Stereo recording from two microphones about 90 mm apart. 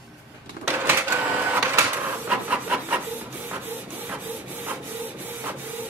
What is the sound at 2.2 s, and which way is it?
Printer, 15° right (ahead or behind).